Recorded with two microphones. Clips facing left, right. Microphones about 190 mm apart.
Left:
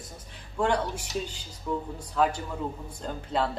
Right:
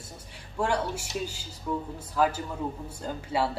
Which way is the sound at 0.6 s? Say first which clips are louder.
Left 1 dB; 10° right (ahead or behind).